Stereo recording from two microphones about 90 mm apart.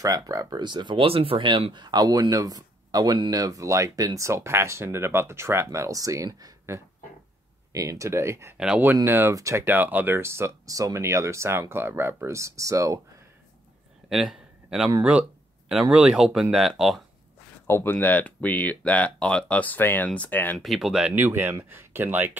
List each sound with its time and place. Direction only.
0.0 s speech: 40° right (ahead or behind)
8.5 s speech: 10° right (ahead or behind)
9.0 s speech: 25° right (ahead or behind)
9.7 s speech: 20° right (ahead or behind); by 13.0 s 35° right (ahead or behind)
14.0 s a sound: 5° right (ahead or behind)
15.7 s speech: 5° right (ahead or behind)
17.6 s speech: 25° left (ahead or behind)
20.5 s speech: centre (ahead or behind)
21.0 s speech: 20° right (ahead or behind)